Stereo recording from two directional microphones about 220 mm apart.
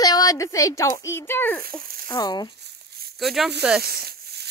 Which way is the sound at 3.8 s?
45° right (ahead or behind).